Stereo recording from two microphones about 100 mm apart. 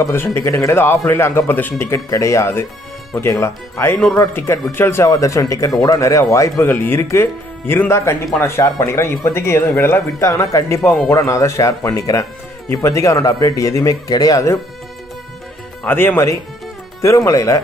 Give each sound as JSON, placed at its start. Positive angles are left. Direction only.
{"t": 0.0, "sound": "speech", "side_deg": 25}
{"t": 15.8, "sound": "speech", "side_deg": 20}